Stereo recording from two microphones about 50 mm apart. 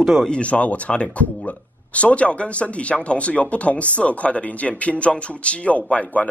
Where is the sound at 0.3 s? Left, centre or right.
Left.